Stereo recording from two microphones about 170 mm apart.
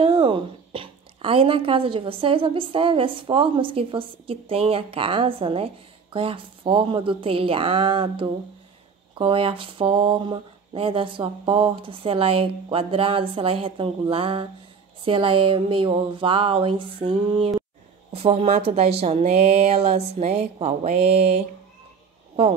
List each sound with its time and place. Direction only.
0.0 s a woman's voice: 30° right (ahead or behind)